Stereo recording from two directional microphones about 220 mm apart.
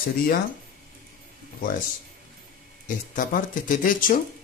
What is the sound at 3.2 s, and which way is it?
Speech, 40° left (ahead or behind).